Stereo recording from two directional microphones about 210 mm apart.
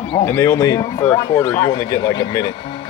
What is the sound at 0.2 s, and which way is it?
Speech, 10° left (ahead or behind).